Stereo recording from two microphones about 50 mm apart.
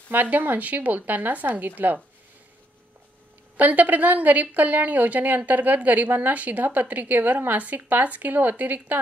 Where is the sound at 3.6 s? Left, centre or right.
Right.